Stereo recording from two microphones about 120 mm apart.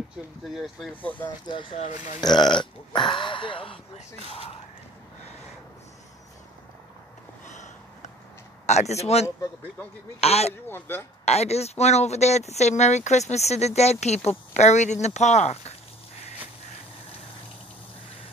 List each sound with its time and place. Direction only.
0.4 s speech: centre (ahead or behind)
1.5 s speech: 45° left (ahead or behind)
2.2 s speech: 35° left (ahead or behind); by 4.5 s 55° left (ahead or behind)
7.4 s a sound: 80° left
8.6 s speech: 70° left (ahead or behind)
10.7 s speech: 20° left (ahead or behind)
11.2 s speech: 65° left (ahead or behind)